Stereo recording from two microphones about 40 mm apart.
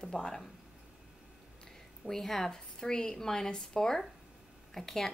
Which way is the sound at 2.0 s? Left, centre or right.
Centre.